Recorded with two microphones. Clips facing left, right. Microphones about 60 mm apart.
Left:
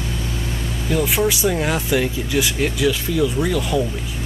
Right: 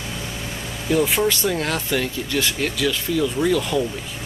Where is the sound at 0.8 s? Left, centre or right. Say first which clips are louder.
Even; centre.